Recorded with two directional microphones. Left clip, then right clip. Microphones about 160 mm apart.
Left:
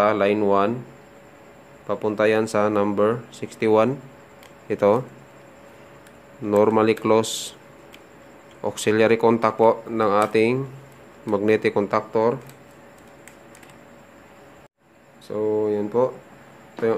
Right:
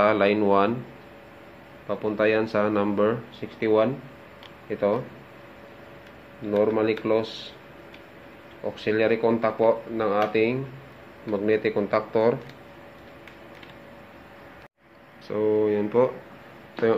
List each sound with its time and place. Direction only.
0.0 s speech: 20° left (ahead or behind)
1.9 s speech: 40° left (ahead or behind)
3.3 s speech: 50° left (ahead or behind)
6.5 s speech: 55° left (ahead or behind)
8.7 s speech: 55° left (ahead or behind)
11.9 s speech: 25° left (ahead or behind)
15.2 s speech: 10° left (ahead or behind)